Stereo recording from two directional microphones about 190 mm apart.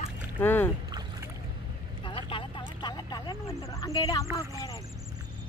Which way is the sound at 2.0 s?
25° left (ahead or behind).